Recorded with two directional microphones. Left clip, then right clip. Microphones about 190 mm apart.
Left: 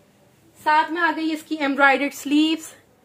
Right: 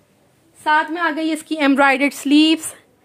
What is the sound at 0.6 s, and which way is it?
A woman's voice, 60° right (ahead or behind).